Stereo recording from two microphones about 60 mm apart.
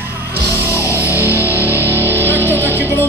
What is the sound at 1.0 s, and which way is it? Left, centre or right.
Music, right.